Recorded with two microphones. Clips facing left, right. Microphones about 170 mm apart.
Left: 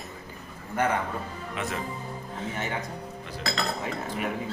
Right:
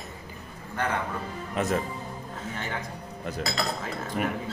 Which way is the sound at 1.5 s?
40° right (ahead or behind).